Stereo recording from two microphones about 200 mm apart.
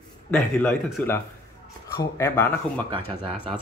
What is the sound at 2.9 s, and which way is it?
Speech, 25° right (ahead or behind).